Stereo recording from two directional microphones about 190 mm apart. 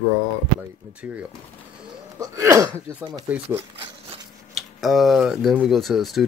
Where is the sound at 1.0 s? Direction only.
10° right (ahead or behind).